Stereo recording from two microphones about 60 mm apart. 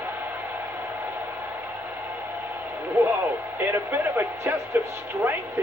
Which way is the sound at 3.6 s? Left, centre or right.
Right.